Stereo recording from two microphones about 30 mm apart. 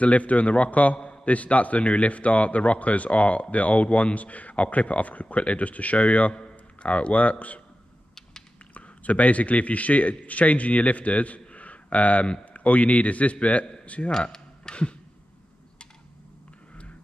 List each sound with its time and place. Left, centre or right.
0.0 s a man's voice: left
6.8 s a man's voice: left
8.1 s typing: left
8.7 s a man's voice: left
14.3 s a sound: left